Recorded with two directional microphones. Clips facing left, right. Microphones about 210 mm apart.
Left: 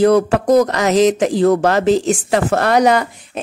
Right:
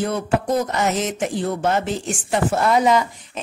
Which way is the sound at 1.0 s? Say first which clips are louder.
Left 10 dB; 90° left.